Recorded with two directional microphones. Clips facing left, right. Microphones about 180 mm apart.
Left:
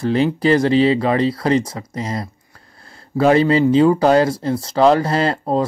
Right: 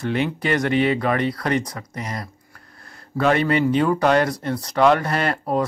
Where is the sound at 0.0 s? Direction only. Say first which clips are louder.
Left 6 dB; 35° left (ahead or behind).